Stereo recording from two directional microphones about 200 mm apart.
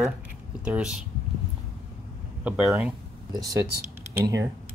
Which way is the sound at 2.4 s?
5° right (ahead or behind).